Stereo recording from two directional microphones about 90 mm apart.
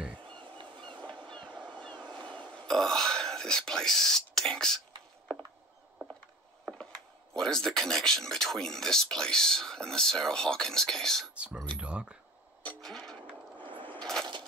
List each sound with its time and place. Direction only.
0.6 s vehicle: 60° right (ahead or behind)
1.0 s vehicle: 10° left (ahead or behind)
2.2 s whispering: 15° left (ahead or behind)
7.3 s speech: 5° left (ahead or behind)
11.3 s speech: 10° right (ahead or behind)
12.8 s a sound: 5° left (ahead or behind)
13.6 s a sound: 65° right (ahead or behind)